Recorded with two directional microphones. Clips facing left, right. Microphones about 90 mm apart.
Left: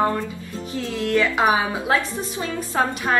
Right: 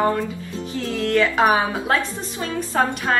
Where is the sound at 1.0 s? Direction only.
10° left (ahead or behind).